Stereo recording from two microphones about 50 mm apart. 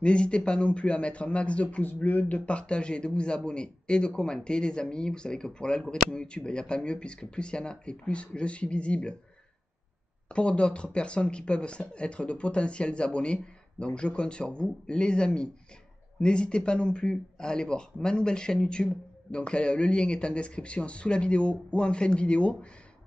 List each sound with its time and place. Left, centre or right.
0.0 s speech: left
10.2 s speech: left